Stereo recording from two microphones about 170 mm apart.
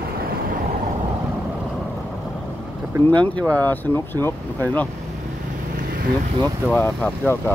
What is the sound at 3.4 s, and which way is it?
Speech, 20° right (ahead or behind).